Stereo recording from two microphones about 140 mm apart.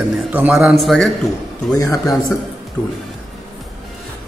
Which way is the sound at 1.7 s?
20° left (ahead or behind).